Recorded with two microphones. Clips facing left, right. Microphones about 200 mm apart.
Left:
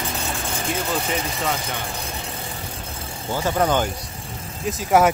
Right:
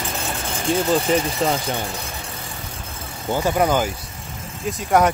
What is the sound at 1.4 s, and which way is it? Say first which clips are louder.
Speech: right 2 dB; 35° right (ahead or behind).